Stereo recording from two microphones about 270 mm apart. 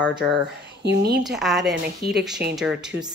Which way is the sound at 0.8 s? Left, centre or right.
Right.